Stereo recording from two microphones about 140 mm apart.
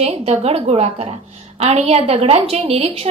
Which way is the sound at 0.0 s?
50° right (ahead or behind).